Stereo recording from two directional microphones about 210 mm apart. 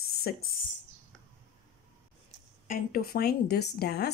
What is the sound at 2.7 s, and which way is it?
Speech, 45° left (ahead or behind).